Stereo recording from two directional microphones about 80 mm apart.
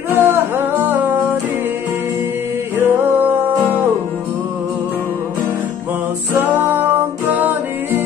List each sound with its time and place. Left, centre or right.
0.1 s music: right
2.8 s music: right
6.4 s music: right